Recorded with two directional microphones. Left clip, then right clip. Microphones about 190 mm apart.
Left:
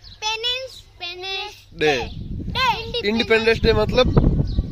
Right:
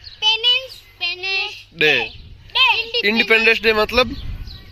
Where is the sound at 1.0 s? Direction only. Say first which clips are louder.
Right 7 dB; 20° left (ahead or behind).